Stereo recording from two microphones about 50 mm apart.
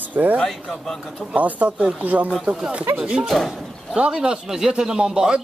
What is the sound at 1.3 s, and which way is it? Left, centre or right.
A man's voice, right.